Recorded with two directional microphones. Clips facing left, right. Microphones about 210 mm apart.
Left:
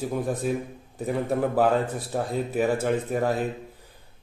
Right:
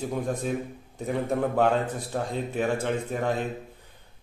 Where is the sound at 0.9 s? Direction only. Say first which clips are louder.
Left 1 dB; centre (ahead or behind).